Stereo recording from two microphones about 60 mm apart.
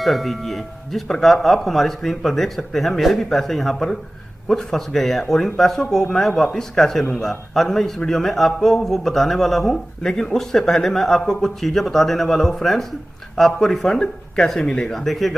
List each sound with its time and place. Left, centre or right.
0.0 s a man's voice: centre